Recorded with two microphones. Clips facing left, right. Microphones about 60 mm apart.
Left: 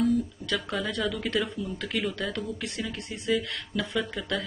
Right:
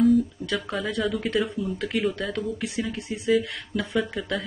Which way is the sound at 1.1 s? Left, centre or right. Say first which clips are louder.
Right 4 dB; centre.